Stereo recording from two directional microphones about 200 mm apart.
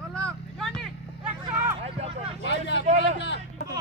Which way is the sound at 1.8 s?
30° right (ahead or behind).